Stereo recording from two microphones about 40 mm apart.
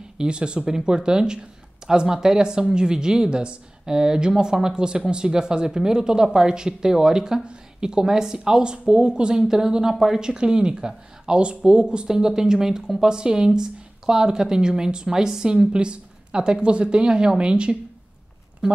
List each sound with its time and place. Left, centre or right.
0.2 s a woman's voice: right